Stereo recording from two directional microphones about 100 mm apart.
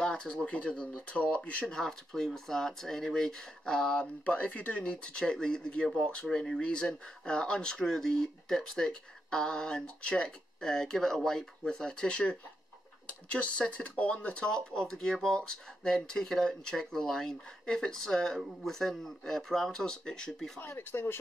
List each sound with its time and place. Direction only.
0.0 s speech: 10° left (ahead or behind)
20.6 s speech: 20° left (ahead or behind)